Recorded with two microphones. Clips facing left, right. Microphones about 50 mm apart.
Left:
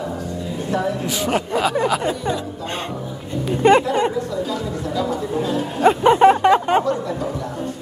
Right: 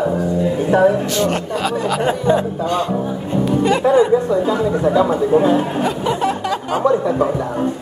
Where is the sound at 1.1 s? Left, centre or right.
Centre.